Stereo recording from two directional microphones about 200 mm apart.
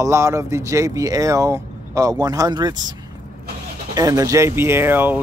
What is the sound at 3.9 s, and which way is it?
Speech, 15° right (ahead or behind).